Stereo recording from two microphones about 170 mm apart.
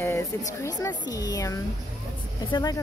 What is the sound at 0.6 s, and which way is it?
Speech, 20° left (ahead or behind).